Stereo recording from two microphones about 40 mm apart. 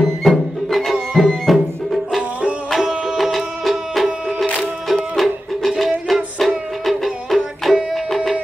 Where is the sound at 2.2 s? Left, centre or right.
Right.